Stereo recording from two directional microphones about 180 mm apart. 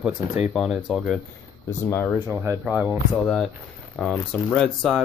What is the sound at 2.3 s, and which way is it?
Speech, 10° right (ahead or behind).